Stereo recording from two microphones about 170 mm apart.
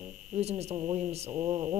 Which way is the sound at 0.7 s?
25° right (ahead or behind).